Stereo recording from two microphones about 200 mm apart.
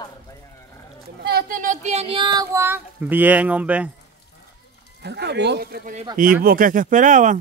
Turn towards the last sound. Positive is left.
turn(degrees=-40)  # may be behind; listen again after turning